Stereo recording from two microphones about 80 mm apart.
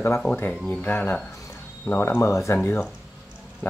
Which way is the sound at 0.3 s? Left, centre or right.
Left.